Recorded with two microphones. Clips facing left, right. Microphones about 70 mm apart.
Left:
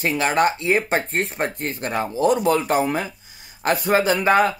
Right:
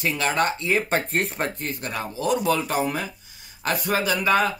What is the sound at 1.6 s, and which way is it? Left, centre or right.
Speech, left.